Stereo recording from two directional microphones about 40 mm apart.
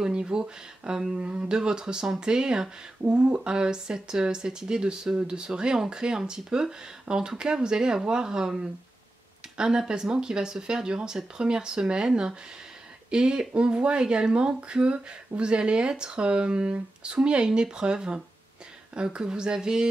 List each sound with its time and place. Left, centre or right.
0.0 s speech: right
1.1 s speech: right
9.6 s speech: centre